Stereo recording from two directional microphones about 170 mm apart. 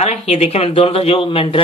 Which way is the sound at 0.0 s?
40° left (ahead or behind).